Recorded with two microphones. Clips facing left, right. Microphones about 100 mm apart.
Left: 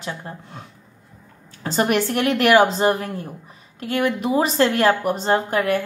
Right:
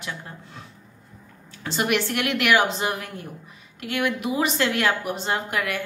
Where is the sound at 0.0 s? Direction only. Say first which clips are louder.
Left 4 dB; 35° left (ahead or behind).